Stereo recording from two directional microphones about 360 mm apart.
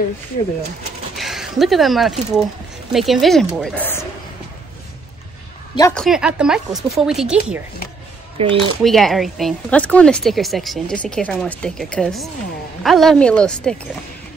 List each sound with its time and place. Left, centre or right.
1.1 s a woman's voice: centre
5.8 s a woman's voice: centre
8.4 s speech: centre
8.8 s a woman's voice: centre